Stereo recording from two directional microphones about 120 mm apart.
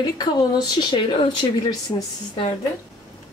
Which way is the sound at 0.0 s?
35° left (ahead or behind).